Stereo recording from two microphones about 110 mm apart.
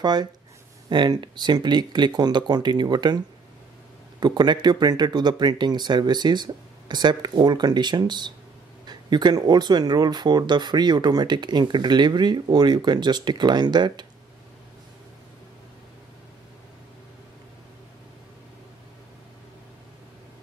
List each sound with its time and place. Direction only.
0.0 s speech: 40° right (ahead or behind)
4.2 s speech: 40° right (ahead or behind)